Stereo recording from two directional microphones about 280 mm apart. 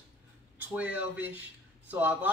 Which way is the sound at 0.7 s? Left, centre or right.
Centre.